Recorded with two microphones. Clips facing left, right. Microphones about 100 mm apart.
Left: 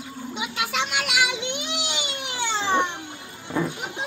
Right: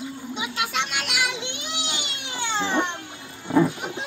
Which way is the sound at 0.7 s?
5° left (ahead or behind).